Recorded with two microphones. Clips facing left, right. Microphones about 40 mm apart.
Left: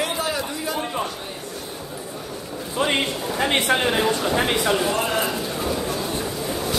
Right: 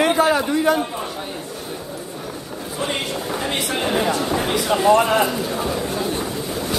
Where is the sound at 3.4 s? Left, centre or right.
Left.